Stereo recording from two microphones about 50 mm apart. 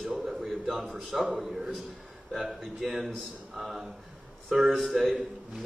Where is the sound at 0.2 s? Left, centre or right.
Centre.